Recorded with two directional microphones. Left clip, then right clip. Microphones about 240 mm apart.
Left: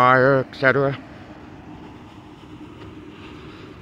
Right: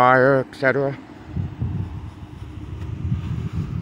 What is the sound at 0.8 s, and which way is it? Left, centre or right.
Speech, centre.